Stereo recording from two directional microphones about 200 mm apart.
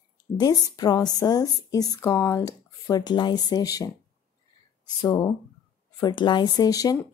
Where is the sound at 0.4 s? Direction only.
20° left (ahead or behind).